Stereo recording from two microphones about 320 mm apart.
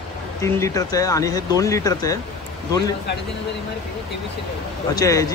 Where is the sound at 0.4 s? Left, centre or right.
Centre.